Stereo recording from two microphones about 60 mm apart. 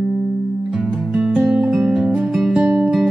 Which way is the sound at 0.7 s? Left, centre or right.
Centre.